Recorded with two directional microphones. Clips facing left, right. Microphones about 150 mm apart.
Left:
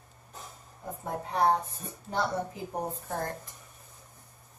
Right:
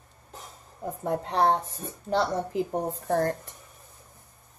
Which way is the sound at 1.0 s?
90° right.